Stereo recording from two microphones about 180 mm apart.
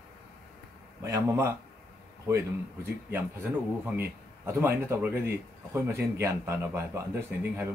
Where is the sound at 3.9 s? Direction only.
10° right (ahead or behind).